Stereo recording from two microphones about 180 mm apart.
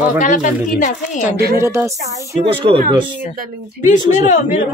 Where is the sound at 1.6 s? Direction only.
15° right (ahead or behind).